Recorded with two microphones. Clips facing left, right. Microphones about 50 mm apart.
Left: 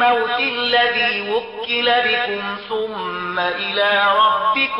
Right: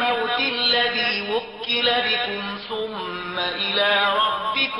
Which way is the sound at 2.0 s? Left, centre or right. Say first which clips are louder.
Left 5 dB; left.